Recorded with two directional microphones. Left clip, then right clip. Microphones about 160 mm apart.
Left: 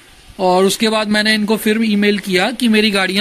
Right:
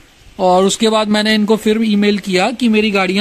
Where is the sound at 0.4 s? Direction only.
30° right (ahead or behind).